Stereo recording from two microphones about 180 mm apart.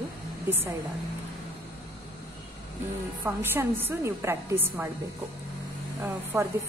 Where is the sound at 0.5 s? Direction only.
10° right (ahead or behind).